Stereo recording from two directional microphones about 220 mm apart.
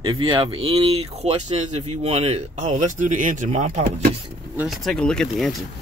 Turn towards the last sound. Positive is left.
turn(degrees=0)  # may be behind; listen again after turning